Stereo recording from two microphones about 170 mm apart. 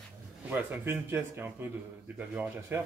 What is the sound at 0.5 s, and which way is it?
A man's voice, 10° right (ahead or behind).